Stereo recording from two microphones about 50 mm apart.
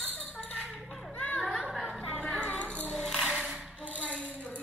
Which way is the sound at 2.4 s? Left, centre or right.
Left.